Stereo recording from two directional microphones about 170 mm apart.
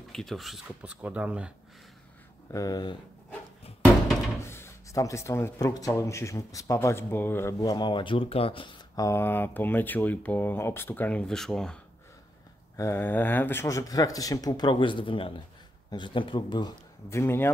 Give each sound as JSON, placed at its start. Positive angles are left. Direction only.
{"t": 0.1, "sound": "speech", "side_deg": 0}
{"t": 2.5, "sound": "speech", "side_deg": 20}
{"t": 4.4, "sound": "speech", "side_deg": 15}
{"t": 12.7, "sound": "speech", "side_deg": 15}